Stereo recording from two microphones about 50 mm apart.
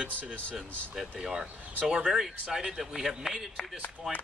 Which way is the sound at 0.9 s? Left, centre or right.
Centre.